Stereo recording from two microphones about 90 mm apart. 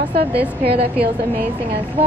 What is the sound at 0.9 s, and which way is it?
Speech, 20° right (ahead or behind).